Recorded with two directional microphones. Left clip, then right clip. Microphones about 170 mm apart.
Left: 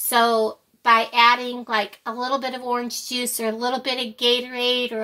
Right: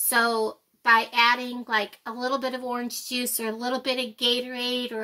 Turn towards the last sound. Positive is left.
turn(degrees=-30)  # may be behind; listen again after turning